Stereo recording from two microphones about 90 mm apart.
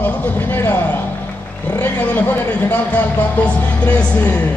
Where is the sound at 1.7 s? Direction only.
20° left (ahead or behind).